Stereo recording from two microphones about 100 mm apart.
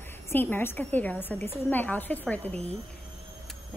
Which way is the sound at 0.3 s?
20° left (ahead or behind).